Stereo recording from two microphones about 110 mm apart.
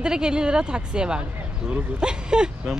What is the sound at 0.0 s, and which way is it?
Speech, 5° right (ahead or behind).